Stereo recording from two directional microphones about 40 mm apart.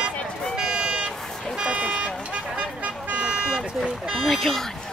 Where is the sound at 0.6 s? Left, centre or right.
Right.